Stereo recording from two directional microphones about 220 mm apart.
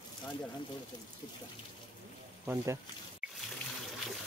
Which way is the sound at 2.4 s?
10° right (ahead or behind).